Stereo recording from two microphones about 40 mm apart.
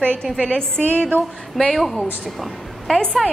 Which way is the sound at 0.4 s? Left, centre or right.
Left.